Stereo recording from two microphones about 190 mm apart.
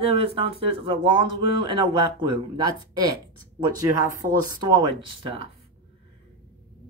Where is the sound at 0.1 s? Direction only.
30° right (ahead or behind).